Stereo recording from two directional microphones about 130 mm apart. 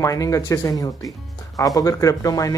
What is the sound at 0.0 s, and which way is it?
Speech, 25° left (ahead or behind).